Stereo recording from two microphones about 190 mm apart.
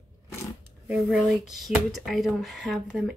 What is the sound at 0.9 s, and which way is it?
Speech, 5° right (ahead or behind).